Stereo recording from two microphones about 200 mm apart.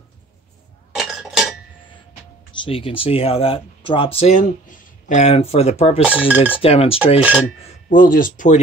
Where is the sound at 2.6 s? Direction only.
30° left (ahead or behind).